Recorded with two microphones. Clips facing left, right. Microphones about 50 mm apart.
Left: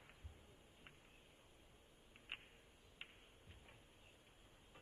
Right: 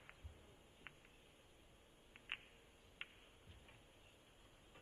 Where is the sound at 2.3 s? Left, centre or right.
Right.